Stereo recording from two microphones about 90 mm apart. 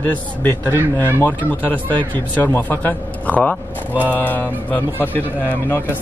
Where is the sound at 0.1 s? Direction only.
25° left (ahead or behind).